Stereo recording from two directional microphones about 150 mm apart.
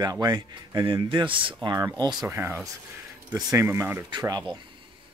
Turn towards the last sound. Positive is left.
turn(degrees=-30)  # may be behind; listen again after turning